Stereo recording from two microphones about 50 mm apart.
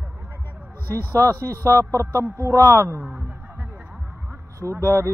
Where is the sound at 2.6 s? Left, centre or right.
Right.